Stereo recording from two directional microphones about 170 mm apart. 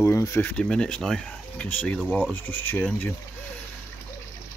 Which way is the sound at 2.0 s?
Centre (ahead or behind).